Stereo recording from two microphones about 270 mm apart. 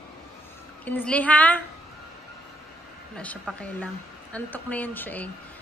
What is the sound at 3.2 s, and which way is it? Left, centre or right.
A woman's voice, centre.